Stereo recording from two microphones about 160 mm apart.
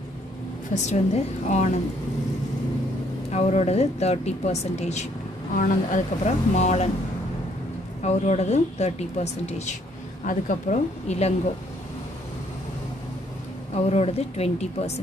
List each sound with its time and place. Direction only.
0.7 s a woman's voice: 45° left (ahead or behind)
3.3 s a woman's voice: 45° left (ahead or behind)
8.0 s a woman's voice: 45° left (ahead or behind)
10.2 s a woman's voice: 55° left (ahead or behind)
13.8 s speech: 40° left (ahead or behind)